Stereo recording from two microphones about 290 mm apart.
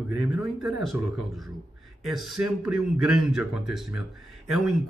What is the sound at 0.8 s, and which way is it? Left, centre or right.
A man's voice, centre.